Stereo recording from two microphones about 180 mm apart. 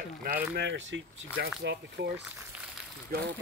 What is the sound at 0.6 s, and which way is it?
Speech, 85° right.